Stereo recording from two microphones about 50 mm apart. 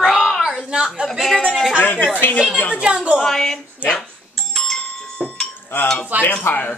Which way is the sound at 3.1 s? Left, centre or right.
Centre.